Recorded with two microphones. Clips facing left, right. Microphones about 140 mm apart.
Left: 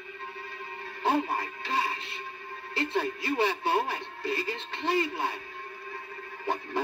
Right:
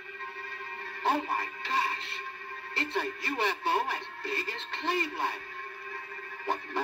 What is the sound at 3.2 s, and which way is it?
A man's voice, 10° left (ahead or behind).